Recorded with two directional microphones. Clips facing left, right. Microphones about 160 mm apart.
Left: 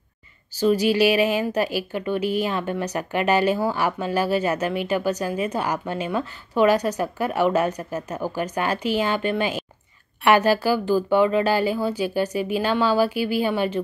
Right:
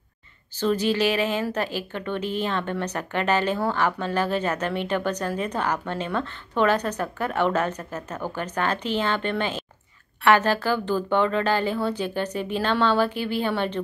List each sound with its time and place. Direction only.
0.6 s a woman's voice: 10° left (ahead or behind)